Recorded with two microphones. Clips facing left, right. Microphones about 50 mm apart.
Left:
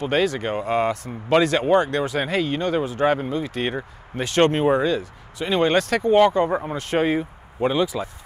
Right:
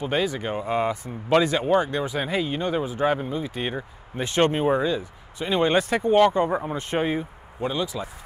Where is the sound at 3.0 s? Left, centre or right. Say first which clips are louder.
Left 3 dB; centre.